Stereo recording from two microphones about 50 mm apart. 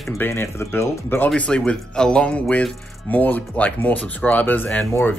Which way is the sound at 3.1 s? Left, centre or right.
Left.